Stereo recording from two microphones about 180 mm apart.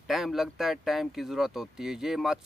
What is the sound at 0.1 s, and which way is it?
Speech, centre (ahead or behind).